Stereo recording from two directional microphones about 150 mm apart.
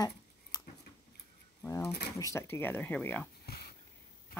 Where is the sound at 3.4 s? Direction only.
90° left.